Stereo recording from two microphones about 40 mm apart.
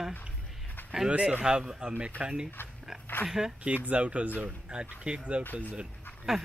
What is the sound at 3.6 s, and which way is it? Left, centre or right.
Speech, right.